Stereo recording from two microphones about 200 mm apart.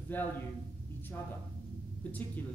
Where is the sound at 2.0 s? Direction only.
10° left (ahead or behind).